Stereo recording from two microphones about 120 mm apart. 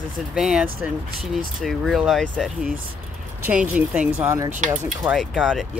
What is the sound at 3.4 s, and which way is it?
Speech, 10° right (ahead or behind).